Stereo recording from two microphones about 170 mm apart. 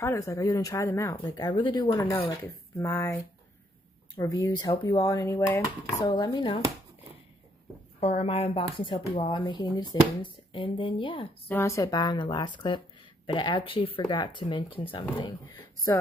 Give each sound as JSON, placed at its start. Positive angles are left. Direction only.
{"t": 0.0, "sound": "speech", "side_deg": 15}
{"t": 2.4, "sound": "speech", "side_deg": 10}
{"t": 4.2, "sound": "speech", "side_deg": 15}
{"t": 8.0, "sound": "speech", "side_deg": 35}
{"t": 11.4, "sound": "speech", "side_deg": 15}
{"t": 15.5, "sound": "speech", "side_deg": 10}